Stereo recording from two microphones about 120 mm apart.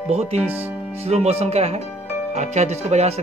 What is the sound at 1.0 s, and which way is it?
Speech, 60° right (ahead or behind).